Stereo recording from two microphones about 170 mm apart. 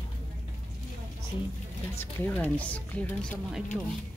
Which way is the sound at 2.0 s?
10° left (ahead or behind).